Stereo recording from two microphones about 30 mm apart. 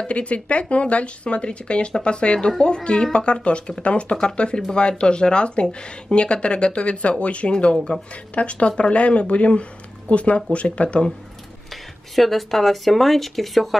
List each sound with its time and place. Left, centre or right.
0.0 s speech: left
11.7 s speech: centre